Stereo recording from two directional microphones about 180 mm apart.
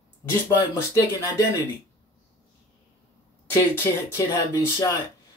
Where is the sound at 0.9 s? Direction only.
15° left (ahead or behind).